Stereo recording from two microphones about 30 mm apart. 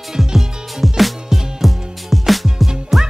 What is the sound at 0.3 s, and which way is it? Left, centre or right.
Music, centre.